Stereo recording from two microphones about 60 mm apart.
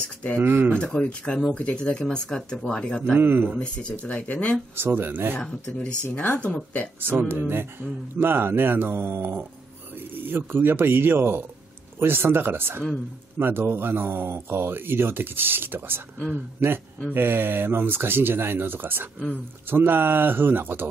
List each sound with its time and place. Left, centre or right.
0.4 s speech: right
0.7 s speech: centre
3.0 s speech: right
4.0 s speech: left
4.7 s speech: right
6.1 s speech: left
7.0 s speech: right
19.1 s speech: centre
19.7 s speech: right